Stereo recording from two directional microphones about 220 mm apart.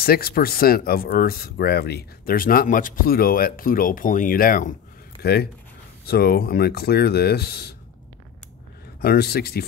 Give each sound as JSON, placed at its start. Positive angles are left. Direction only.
{"t": 0.0, "sound": "speech", "side_deg": 45}
{"t": 9.0, "sound": "speech", "side_deg": 45}